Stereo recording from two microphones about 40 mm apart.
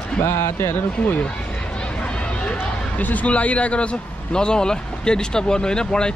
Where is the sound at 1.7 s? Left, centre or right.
Left.